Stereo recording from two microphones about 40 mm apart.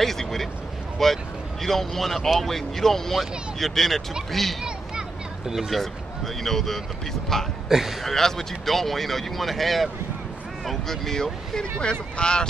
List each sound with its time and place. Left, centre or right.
0.0 s speech: centre
5.7 s speech: centre
11.8 s speech: left